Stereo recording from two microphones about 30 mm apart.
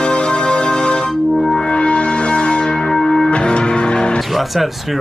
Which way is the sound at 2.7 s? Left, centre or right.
Left.